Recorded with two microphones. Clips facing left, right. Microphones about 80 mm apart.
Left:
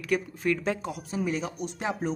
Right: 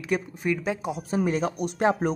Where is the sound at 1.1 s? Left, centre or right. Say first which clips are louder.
Right 5 dB; right.